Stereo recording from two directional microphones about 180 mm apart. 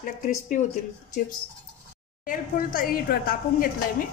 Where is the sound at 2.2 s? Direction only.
50° left (ahead or behind).